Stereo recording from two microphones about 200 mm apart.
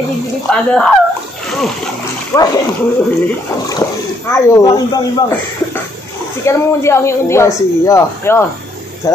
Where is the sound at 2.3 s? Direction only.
15° left (ahead or behind).